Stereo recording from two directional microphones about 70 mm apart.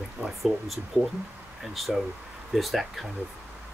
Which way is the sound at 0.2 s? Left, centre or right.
Centre.